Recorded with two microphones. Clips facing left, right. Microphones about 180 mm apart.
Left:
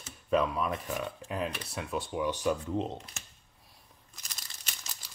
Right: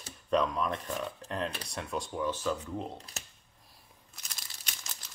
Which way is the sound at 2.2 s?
15° left (ahead or behind).